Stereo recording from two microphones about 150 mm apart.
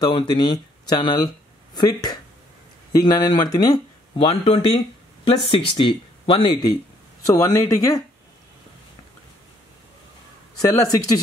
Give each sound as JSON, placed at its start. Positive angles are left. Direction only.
{"t": 0.0, "sound": "speech", "side_deg": 30}
{"t": 4.2, "sound": "speech", "side_deg": 40}
{"t": 10.7, "sound": "speech", "side_deg": 25}